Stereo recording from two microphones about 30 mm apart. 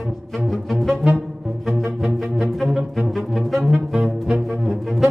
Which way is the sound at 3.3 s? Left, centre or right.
Centre.